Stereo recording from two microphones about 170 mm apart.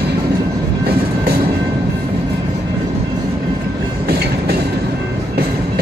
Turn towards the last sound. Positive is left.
turn(degrees=-70)  # may be behind; listen again after turning